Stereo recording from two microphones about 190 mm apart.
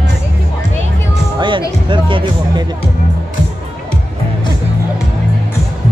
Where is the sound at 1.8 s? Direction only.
25° right (ahead or behind).